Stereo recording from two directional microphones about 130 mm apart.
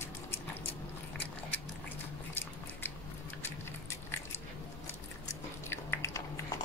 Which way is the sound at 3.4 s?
20° left (ahead or behind).